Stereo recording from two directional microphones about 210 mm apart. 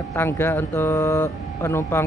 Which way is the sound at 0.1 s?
10° left (ahead or behind).